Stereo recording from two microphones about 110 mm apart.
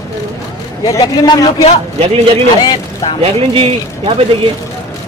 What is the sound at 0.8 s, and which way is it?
Speech, 35° left (ahead or behind).